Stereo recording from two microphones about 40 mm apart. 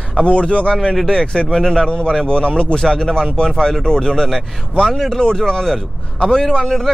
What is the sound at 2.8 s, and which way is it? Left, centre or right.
Speech, centre.